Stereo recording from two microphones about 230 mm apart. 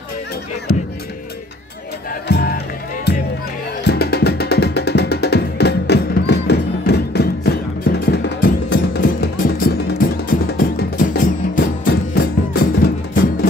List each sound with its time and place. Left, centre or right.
2.2 s speech: left
3.8 s music: left